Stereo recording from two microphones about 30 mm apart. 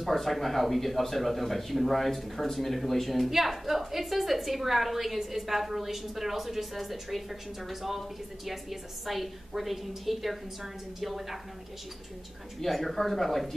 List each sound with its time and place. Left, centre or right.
0.0 s a woman's voice: centre
12.5 s a woman's voice: centre